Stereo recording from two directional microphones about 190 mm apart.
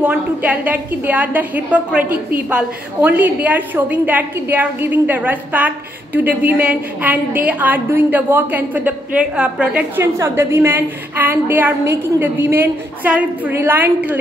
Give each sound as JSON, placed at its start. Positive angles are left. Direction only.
{"t": 0.0, "sound": "a woman's voice", "side_deg": -10}